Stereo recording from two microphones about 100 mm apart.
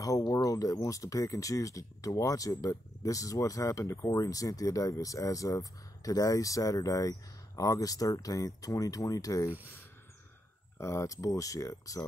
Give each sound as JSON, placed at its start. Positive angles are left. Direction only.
{"t": 0.0, "sound": "speech", "side_deg": 35}
{"t": 10.8, "sound": "speech", "side_deg": 30}